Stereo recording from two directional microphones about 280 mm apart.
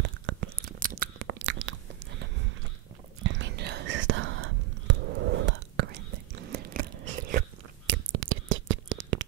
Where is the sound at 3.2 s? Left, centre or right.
Right.